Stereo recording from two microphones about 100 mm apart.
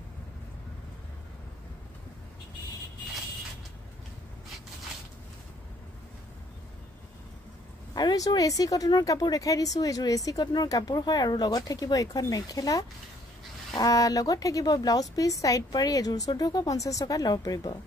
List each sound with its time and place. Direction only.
7.9 s speech: 40° left (ahead or behind)